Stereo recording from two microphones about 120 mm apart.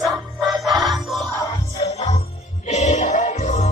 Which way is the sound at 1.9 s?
65° left (ahead or behind).